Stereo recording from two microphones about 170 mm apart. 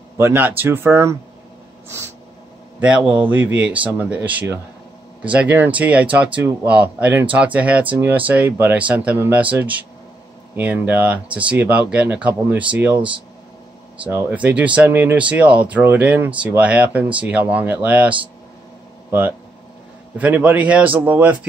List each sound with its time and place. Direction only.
0.2 s speech: 10° right (ahead or behind)
3.1 s speech: 10° right (ahead or behind)
14.0 s speech: 10° right (ahead or behind)